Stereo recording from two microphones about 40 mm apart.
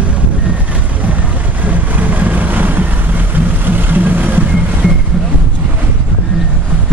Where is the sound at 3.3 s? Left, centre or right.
Right.